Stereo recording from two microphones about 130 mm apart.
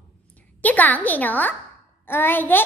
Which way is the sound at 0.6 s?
10° left (ahead or behind).